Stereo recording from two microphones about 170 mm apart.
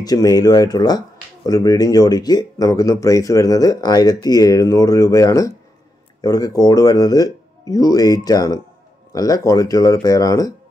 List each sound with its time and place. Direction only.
0.0 s speech: 20° left (ahead or behind)